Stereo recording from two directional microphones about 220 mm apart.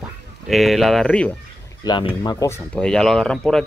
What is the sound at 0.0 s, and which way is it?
Speech, centre (ahead or behind).